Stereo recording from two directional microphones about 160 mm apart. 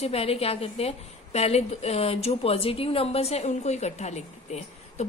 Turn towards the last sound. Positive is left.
turn(degrees=45)  # may be behind; listen again after turning